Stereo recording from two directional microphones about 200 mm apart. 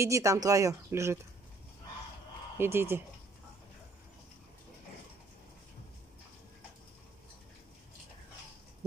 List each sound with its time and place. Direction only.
0.0 s speech: 15° right (ahead or behind)
2.5 s speech: 10° right (ahead or behind)